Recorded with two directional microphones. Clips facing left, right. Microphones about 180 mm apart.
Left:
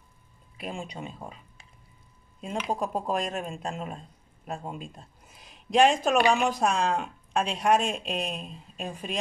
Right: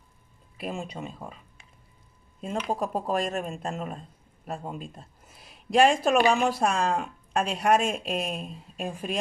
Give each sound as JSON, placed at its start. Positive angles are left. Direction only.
{"t": 0.6, "sound": "speech", "side_deg": 0}
{"t": 2.4, "sound": "speech", "side_deg": 0}